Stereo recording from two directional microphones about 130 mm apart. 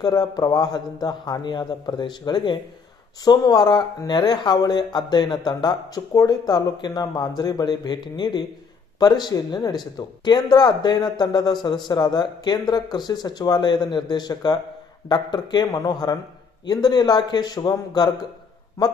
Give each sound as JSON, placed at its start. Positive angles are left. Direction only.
{"t": 0.0, "sound": "speech", "side_deg": 30}